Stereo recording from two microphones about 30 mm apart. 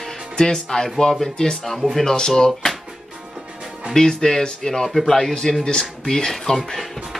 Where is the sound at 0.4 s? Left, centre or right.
Left.